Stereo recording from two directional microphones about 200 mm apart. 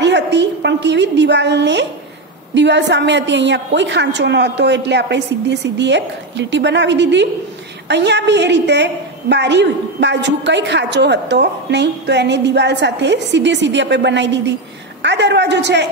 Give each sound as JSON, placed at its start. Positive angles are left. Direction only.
{"t": 0.0, "sound": "a woman's voice", "side_deg": -60}